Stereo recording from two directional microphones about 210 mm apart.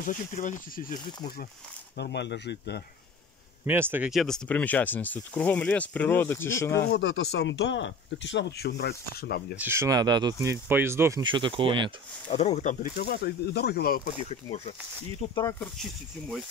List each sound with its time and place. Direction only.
0.0 s speech: 40° left (ahead or behind)
2.0 s speech: 55° left (ahead or behind)
3.6 s speech: 10° right (ahead or behind); by 6.9 s 10° left (ahead or behind)
6.9 s speech: 55° left (ahead or behind)
9.6 s speech: 10° right (ahead or behind)
12.3 s speech: 30° left (ahead or behind)
14.1 s speech: 30° left (ahead or behind)
15.6 s speech: centre (ahead or behind)